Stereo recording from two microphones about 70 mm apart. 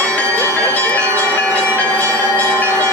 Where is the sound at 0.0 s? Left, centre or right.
Centre.